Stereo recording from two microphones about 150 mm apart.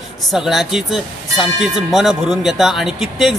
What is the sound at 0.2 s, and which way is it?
Speech, centre (ahead or behind).